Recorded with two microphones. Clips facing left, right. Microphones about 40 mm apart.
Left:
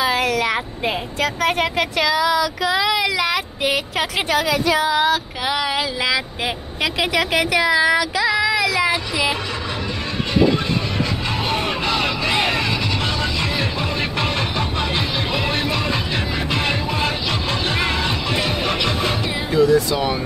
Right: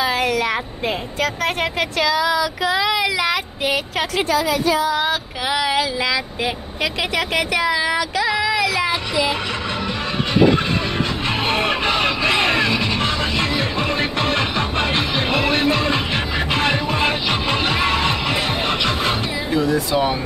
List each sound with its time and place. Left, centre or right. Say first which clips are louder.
0.0 s speech: even; centre
4.5 s speech: even; left
5.0 s speech: left 2 dB; centre
11.2 s music: right 5 dB; right
17.3 s music: right 2 dB; right
19.5 s speech: left 4 dB; centre